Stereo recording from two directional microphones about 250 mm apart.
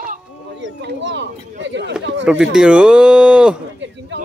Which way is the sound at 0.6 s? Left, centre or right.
Right.